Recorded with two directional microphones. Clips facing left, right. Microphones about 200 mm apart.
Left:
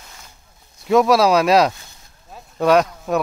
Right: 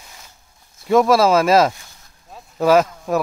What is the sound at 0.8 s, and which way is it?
Speech, centre (ahead or behind).